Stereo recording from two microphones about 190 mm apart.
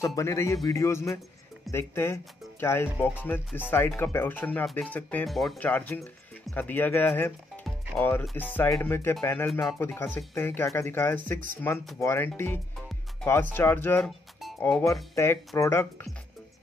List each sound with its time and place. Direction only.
0.0 s speech: 15° left (ahead or behind)
7.6 s music: 5° left (ahead or behind)
8.5 s speech: 10° left (ahead or behind)